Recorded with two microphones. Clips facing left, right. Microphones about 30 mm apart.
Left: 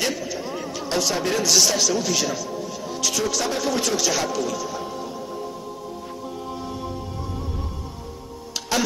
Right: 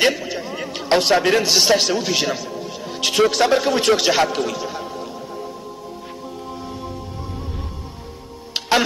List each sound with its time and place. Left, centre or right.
0.0 s a sound: right
1.4 s a man's voice: right
2.9 s a man's voice: right
8.6 s music: right